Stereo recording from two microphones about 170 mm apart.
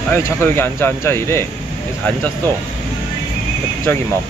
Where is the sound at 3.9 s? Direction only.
15° left (ahead or behind).